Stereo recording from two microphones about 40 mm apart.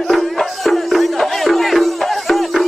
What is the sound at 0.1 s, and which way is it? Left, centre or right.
Music, centre.